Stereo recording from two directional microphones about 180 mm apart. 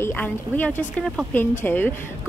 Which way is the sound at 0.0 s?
10° left (ahead or behind).